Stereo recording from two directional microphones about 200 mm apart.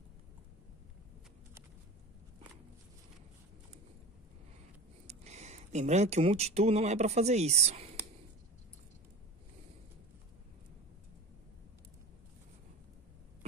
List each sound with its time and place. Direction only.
5.0 s speech: 35° right (ahead or behind)